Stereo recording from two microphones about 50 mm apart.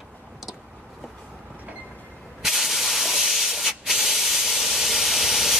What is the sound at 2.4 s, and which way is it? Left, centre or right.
Hiss, centre.